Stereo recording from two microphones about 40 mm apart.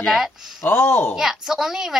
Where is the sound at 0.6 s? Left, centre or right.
Left.